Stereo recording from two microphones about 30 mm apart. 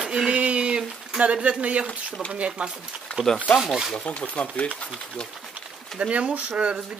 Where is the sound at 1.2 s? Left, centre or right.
Right.